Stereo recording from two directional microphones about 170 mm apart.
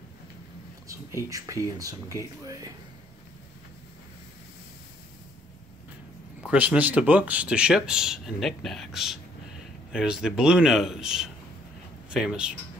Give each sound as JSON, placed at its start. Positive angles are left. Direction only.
{"t": 0.8, "sound": "speech", "side_deg": -20}
{"t": 6.4, "sound": "speech", "side_deg": -5}